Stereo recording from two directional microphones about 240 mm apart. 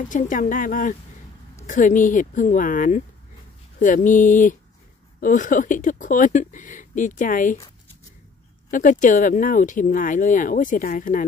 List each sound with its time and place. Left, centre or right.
0.1 s speech: left
8.6 s speech: left